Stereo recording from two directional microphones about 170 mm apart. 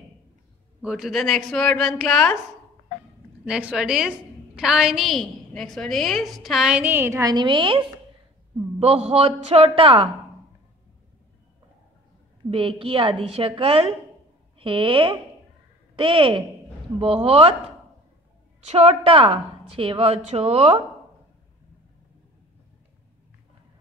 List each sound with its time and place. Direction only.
0.8 s a woman's voice: 5° right (ahead or behind)
3.4 s a woman's voice: 5° right (ahead or behind); by 10.0 s 30° right (ahead or behind)
12.4 s a woman's voice: 35° right (ahead or behind)
18.7 s a woman's voice: 35° right (ahead or behind)